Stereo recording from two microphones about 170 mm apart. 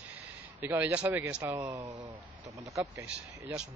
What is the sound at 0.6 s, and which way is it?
Speech, 10° right (ahead or behind).